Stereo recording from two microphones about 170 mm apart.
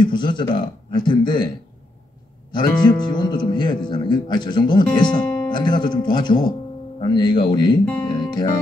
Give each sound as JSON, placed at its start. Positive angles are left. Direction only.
{"t": 0.0, "sound": "speech", "side_deg": 25}
{"t": 2.5, "sound": "speech", "side_deg": 25}
{"t": 8.1, "sound": "guitar", "side_deg": 25}